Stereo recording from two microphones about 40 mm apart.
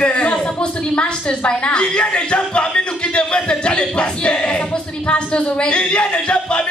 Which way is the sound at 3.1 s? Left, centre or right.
Left.